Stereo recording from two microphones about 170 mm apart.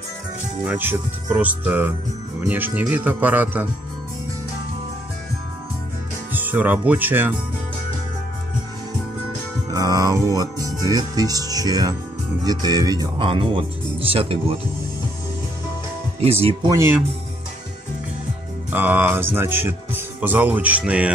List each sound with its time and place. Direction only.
0.7 s speech: 10° right (ahead or behind)
6.3 s speech: 10° right (ahead or behind)
9.7 s music: 20° right (ahead or behind)
10.3 s speech: 20° right (ahead or behind)
16.2 s speech: 35° right (ahead or behind)
16.6 s speech: 20° right (ahead or behind)
18.7 s speech: 10° right (ahead or behind)